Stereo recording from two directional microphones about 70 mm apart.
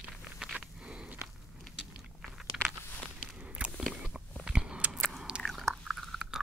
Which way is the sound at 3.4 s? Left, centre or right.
Centre.